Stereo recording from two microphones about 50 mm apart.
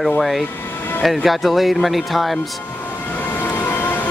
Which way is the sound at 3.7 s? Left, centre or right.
Left.